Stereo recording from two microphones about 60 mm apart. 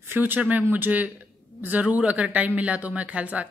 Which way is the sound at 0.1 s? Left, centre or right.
Right.